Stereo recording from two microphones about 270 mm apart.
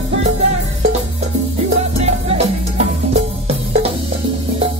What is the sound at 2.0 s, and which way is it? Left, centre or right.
Music, right.